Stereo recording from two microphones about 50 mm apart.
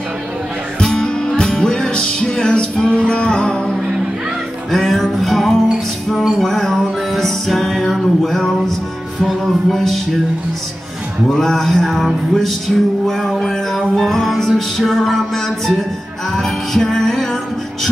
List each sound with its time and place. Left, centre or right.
0.7 s music: centre
11.3 s music: centre
16.3 s music: centre